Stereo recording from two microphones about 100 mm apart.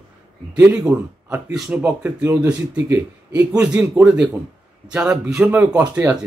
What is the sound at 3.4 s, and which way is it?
A man's voice, 10° right (ahead or behind).